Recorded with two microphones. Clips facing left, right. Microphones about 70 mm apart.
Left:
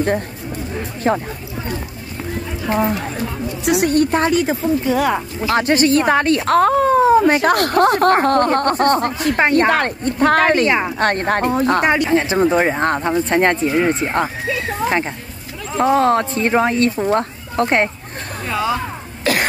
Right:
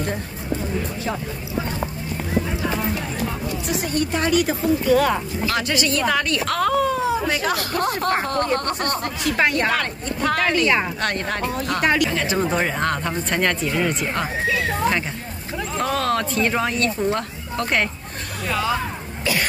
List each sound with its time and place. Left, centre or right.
1.0 s speech: left
3.6 s a woman's voice: left
3.9 s speech: left
4.9 s speech: centre
5.5 s a woman's voice: left
15.8 s speech: left
18.5 s speech: centre